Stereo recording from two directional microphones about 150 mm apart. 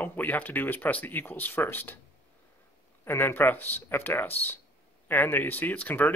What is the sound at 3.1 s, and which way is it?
Speech, 15° left (ahead or behind).